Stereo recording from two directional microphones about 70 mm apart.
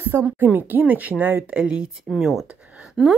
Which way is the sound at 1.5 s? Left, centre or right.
Centre.